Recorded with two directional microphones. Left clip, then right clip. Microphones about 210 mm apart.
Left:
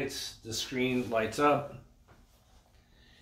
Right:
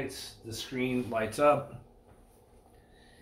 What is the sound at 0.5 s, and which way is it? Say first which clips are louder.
Speech: left 2 dB; 5° right (ahead or behind).